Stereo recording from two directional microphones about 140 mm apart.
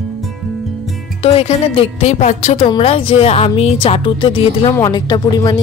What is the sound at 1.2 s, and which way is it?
A woman's voice, 45° left (ahead or behind).